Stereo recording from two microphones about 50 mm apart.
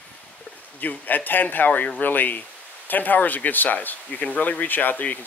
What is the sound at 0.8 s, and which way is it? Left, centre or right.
Speech, left.